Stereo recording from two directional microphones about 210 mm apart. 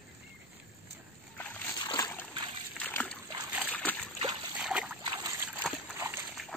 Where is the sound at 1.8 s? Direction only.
20° left (ahead or behind).